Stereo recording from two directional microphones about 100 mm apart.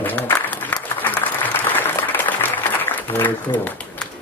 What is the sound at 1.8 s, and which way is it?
Applause, 20° left (ahead or behind).